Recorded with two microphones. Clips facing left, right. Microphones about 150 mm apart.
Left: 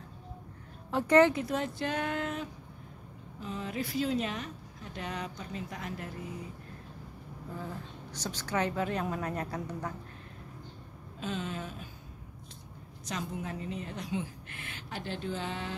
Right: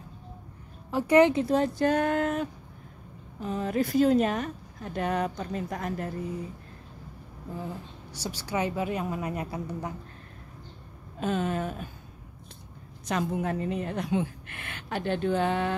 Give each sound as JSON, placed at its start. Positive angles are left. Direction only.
{"t": 0.9, "sound": "a woman's voice", "side_deg": -10}
{"t": 1.3, "sound": "speech", "side_deg": -30}
{"t": 7.5, "sound": "a woman's voice", "side_deg": -15}
{"t": 11.1, "sound": "a woman's voice", "side_deg": -55}
{"t": 13.0, "sound": "a woman's voice", "side_deg": -60}